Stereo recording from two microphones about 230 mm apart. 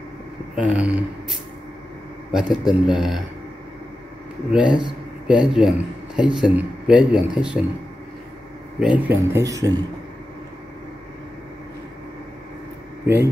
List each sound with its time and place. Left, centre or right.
0.6 s speech: centre
2.5 s speech: centre
4.5 s speech: centre
8.7 s speech: centre
13.0 s speech: centre